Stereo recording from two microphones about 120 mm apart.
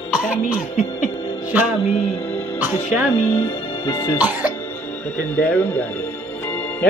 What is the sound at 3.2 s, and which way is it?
Speech, 20° left (ahead or behind).